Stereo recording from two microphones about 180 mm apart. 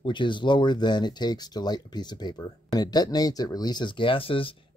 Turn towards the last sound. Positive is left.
turn(degrees=30)  # may be behind; listen again after turning